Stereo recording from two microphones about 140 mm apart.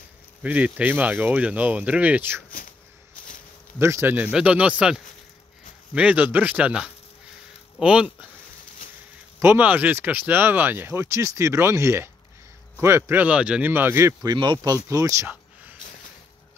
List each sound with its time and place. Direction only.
0.4 s speech: 10° right (ahead or behind)
3.8 s speech: 20° right (ahead or behind)
9.4 s speech: 15° right (ahead or behind)
14.3 s speech: 35° right (ahead or behind); by 15.7 s 20° right (ahead or behind)